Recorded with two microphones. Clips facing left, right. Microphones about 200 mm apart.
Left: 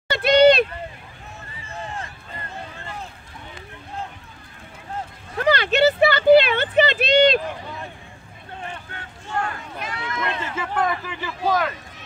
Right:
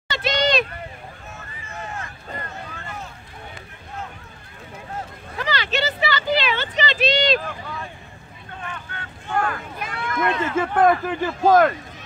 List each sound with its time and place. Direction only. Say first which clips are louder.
0.1 s vehicle: left 8 dB; 60° left (ahead or behind)
1.7 s run: left 1 dB; 30° left (ahead or behind)
5.4 s a sound: left 7 dB; 55° left (ahead or behind)
9.4 s speech: right 2 dB; 55° right (ahead or behind)